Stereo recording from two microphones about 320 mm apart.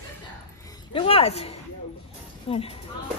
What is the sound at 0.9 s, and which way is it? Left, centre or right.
Speech, centre.